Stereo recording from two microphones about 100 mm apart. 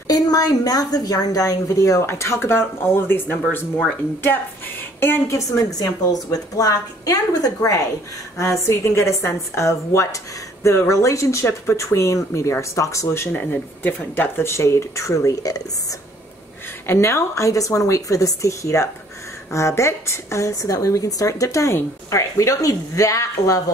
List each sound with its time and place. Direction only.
0.1 s a woman's voice: 40° left (ahead or behind); by 3.8 s 20° left (ahead or behind)
5.0 s a woman's voice: 25° left (ahead or behind)
16.8 s a woman's voice: 25° left (ahead or behind)